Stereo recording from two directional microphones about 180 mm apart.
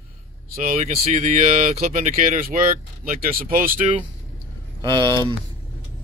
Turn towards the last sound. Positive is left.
turn(degrees=-25)  # may be behind; listen again after turning